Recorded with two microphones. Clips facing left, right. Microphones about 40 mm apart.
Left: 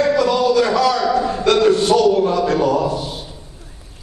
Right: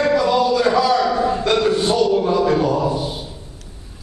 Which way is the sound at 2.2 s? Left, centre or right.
Centre.